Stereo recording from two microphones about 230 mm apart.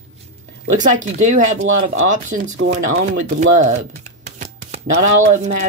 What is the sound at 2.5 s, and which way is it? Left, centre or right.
Speech, right.